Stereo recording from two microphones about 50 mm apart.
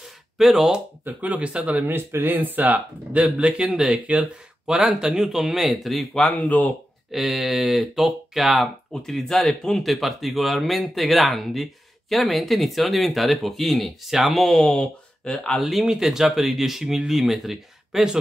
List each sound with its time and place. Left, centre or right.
0.0 s a sound: centre
1.0 s speech: right
1.7 s speech: right
2.0 s speech: right
2.3 s speech: right
3.1 s speech: right; by 6.2 s centre
6.2 s speech: left
7.1 s speech: centre
9.8 s speech: centre
15.6 s speech: centre